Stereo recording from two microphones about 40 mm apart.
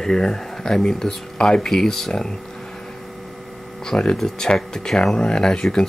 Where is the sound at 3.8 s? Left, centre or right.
Centre.